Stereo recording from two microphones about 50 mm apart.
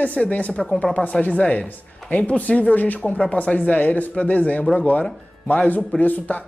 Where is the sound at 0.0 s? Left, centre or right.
Left.